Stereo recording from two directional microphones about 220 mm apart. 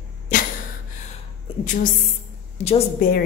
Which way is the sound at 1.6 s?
35° left (ahead or behind).